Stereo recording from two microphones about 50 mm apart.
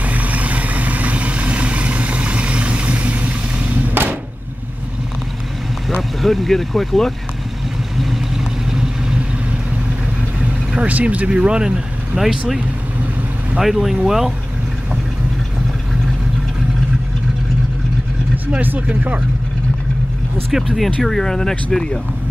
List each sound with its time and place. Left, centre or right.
0.0 s vehicle: right
6.2 s speech: centre
8.0 s vehicle: centre
10.7 s speech: right
12.2 s speech: centre
13.6 s speech: centre
18.6 s speech: right
20.7 s speech: centre